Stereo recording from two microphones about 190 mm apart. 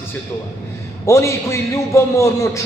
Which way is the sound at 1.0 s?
15° left (ahead or behind).